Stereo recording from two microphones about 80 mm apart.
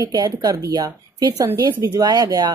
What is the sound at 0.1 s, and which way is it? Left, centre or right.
Speech, right.